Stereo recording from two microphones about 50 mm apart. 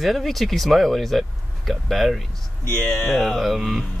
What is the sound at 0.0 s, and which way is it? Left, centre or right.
Speech, centre.